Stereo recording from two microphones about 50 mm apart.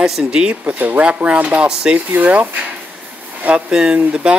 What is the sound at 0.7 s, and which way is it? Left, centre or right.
Speech, right.